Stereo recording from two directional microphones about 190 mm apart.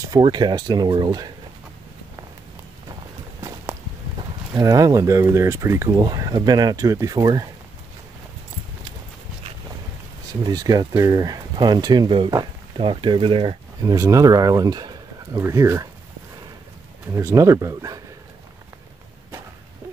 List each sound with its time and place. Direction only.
0.1 s speech: 20° right (ahead or behind)
4.6 s speech: 20° right (ahead or behind)
10.4 s speech: 20° right (ahead or behind)
13.9 s speech: 15° right (ahead or behind)
17.1 s speech: 15° right (ahead or behind)